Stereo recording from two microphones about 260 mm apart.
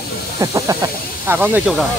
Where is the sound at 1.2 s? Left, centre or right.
Centre.